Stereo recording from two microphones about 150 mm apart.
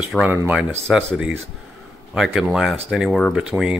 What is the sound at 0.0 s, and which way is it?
Speech, 10° right (ahead or behind).